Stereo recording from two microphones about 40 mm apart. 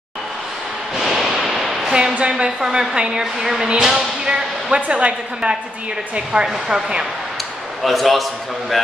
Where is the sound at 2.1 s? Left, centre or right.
Right.